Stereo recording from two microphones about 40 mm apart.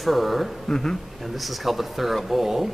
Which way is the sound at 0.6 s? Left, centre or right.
Centre.